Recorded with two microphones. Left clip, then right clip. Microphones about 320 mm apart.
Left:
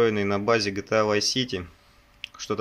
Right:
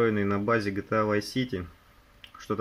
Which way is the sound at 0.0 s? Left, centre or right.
Centre.